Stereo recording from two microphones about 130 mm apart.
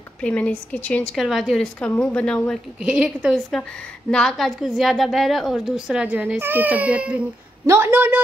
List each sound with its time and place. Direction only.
0.2 s a woman's voice: 10° left (ahead or behind)
1.1 s a woman's voice: centre (ahead or behind)
2.8 s a woman's voice: 5° right (ahead or behind)